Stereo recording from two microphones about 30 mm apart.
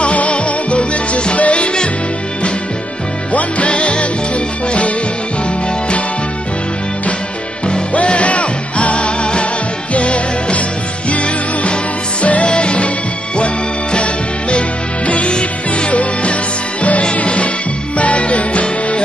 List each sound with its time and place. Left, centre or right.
0.0 s music: left
3.3 s music: left
7.9 s music: left
13.9 s music: left
15.3 s music: left
15.9 s music: left